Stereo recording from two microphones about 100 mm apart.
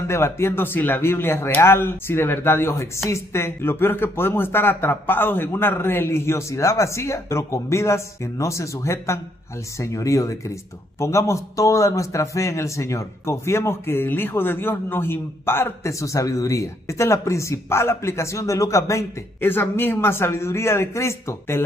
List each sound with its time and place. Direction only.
0.1 s a man's voice: 25° left (ahead or behind)